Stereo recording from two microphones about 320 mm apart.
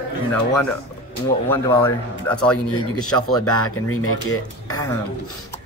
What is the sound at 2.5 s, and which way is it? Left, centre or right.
Speech, left.